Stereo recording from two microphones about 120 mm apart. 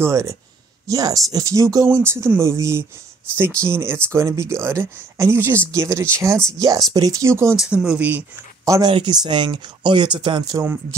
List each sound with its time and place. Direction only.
0.0 s speech: 25° right (ahead or behind)
7.7 s speech: 10° right (ahead or behind)
8.6 s speech: 25° right (ahead or behind)
8.9 s speech: 40° right (ahead or behind)